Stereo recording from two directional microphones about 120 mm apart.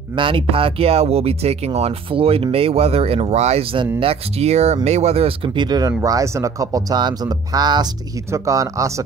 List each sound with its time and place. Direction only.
0.1 s speech: 45° right (ahead or behind); by 9.0 s 25° right (ahead or behind)